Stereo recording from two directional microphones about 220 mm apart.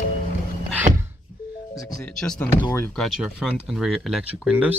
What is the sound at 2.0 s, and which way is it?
Speech, 5° left (ahead or behind).